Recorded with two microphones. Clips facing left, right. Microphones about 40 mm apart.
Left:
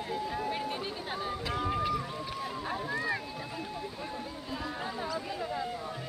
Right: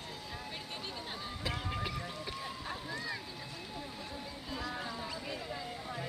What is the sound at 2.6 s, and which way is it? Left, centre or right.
Vehicle, centre.